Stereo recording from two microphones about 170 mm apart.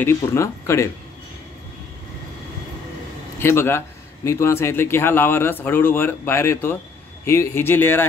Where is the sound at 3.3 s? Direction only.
15° left (ahead or behind).